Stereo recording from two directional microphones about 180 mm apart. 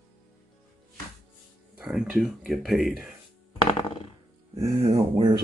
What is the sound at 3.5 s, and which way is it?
Music, 30° left (ahead or behind).